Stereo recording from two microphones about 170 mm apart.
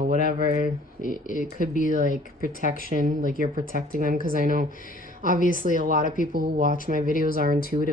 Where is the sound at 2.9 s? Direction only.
55° right (ahead or behind).